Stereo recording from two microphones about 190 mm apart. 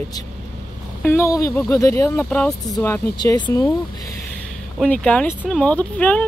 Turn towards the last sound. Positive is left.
turn(degrees=5)  # may be behind; listen again after turning